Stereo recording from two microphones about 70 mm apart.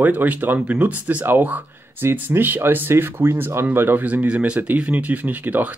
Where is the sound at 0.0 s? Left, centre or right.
Right.